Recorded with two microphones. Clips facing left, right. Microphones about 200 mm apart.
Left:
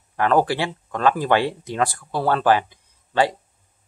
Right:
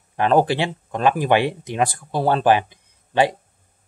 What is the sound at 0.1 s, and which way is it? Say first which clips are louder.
Speech: right 2 dB; 20° right (ahead or behind).